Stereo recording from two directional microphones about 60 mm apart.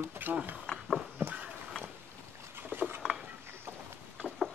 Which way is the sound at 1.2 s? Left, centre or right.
Right.